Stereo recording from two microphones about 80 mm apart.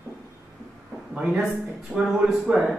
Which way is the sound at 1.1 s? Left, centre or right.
Centre.